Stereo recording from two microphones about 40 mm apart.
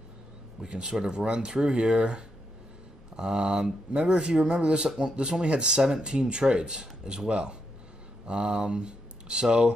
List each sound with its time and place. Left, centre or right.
0.7 s speech: right